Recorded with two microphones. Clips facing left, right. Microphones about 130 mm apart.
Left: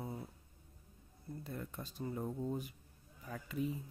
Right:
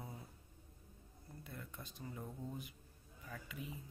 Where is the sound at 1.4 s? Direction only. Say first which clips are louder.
Left 6 dB; 40° left (ahead or behind).